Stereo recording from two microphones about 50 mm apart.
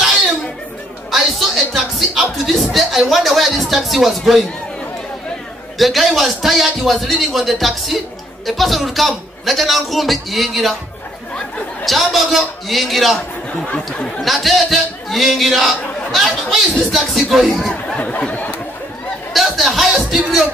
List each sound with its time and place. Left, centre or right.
1.1 s speech: centre
5.8 s speech: centre
11.8 s speech: centre
13.7 s speech: left
14.2 s speech: centre
17.9 s a sound: left
19.5 s speech: centre